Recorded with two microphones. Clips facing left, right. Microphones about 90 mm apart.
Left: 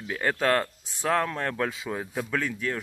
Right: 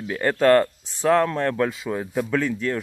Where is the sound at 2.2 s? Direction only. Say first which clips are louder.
Right 7 dB; 10° right (ahead or behind).